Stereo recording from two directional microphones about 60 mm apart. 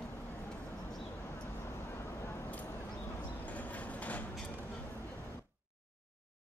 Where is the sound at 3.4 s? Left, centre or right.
Left.